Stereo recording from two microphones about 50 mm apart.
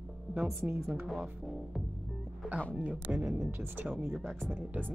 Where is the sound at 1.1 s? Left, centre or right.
Centre.